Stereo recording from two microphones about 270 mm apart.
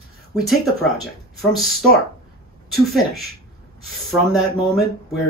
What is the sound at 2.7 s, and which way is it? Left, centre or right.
Speech, centre.